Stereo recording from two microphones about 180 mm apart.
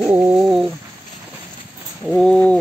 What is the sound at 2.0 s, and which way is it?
Mechanisms, centre (ahead or behind).